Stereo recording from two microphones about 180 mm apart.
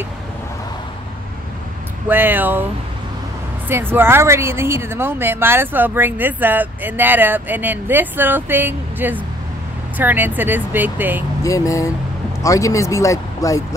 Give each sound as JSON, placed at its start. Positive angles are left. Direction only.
{"t": 2.0, "sound": "speech", "side_deg": -10}
{"t": 3.6, "sound": "speech", "side_deg": -10}
{"t": 11.4, "sound": "speech", "side_deg": 20}